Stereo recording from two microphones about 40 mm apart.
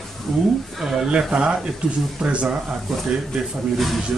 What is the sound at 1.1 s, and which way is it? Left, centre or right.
Speech, right.